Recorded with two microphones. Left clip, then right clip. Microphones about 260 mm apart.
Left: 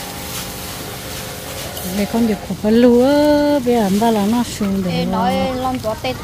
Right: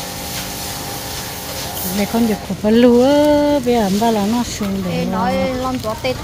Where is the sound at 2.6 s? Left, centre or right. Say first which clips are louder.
Right 1 dB; centre.